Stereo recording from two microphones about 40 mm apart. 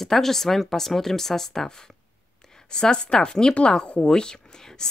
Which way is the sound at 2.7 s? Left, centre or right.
Centre.